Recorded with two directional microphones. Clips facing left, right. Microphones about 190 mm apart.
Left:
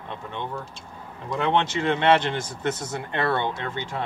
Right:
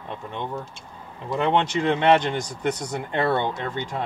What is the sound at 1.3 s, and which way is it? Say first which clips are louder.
Speech: right 2 dB; 15° right (ahead or behind).